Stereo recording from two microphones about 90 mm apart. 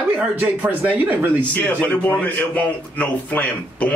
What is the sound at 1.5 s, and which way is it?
A man's voice, 15° left (ahead or behind).